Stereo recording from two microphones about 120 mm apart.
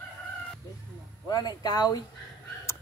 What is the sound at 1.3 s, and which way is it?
Speech, 35° left (ahead or behind).